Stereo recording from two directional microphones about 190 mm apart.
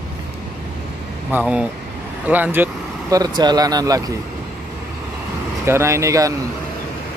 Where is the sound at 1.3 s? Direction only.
5° right (ahead or behind).